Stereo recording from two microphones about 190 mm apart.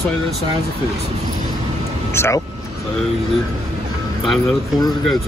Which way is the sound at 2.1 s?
15° left (ahead or behind).